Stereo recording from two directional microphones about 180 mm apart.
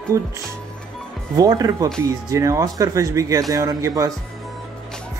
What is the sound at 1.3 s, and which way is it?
Speech, 20° right (ahead or behind).